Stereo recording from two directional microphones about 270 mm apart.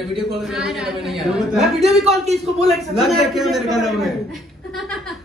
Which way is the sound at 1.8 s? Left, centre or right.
Right.